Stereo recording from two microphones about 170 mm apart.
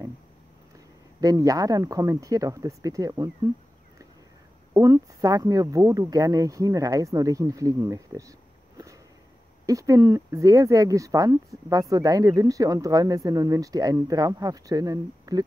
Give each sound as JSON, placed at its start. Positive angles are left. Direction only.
{"t": 0.7, "sound": "speech", "side_deg": -20}
{"t": 4.7, "sound": "speech", "side_deg": -20}